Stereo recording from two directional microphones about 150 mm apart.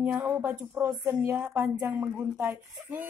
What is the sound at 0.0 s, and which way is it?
A woman's voice, 15° right (ahead or behind).